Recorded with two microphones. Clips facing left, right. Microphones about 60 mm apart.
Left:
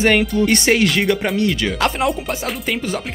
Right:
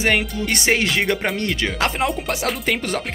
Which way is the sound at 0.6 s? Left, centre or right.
Centre.